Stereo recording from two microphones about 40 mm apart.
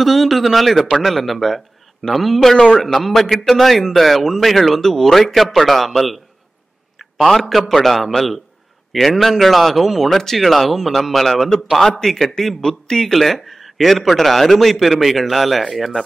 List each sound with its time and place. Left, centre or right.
0.0 s a man's voice: centre
2.5 s a man's voice: centre
2.8 s a man's voice: centre
13.1 s a man's voice: centre